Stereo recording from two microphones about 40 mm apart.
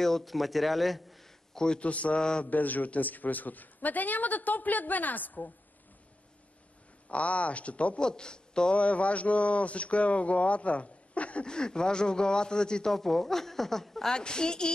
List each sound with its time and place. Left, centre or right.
0.0 s a man's voice: centre
1.8 s speech: left
2.4 s a man's voice: left
7.1 s speech: left
8.0 s a man's voice: left
8.7 s speech: left
11.4 s speech: left
12.9 s a woman's voice: centre
14.1 s speech: left